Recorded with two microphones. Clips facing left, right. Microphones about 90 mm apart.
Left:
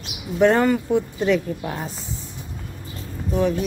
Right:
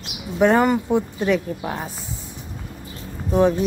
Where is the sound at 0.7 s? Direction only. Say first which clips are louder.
Even; 20° right (ahead or behind).